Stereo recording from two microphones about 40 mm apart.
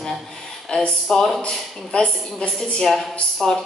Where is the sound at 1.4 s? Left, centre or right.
Left.